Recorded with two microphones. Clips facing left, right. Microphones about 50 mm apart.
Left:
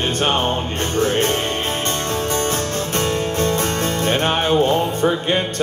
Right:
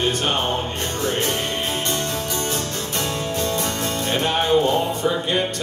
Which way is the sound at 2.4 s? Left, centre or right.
Left.